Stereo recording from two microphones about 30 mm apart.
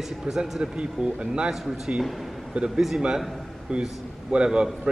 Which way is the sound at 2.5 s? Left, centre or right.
Right.